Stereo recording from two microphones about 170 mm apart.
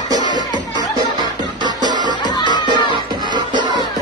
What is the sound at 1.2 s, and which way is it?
Music, 25° right (ahead or behind).